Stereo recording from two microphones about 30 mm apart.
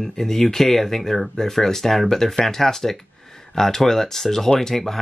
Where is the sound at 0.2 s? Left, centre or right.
Centre.